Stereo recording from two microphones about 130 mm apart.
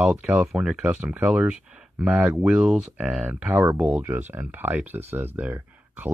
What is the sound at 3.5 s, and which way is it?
Speech, 20° right (ahead or behind).